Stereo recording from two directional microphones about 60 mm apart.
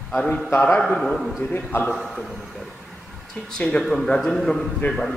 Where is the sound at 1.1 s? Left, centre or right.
Centre.